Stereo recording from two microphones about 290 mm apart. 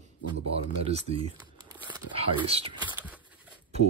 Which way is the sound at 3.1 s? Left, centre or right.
Centre.